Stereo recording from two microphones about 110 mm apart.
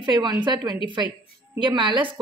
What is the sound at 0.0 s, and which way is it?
Speech, 40° right (ahead or behind).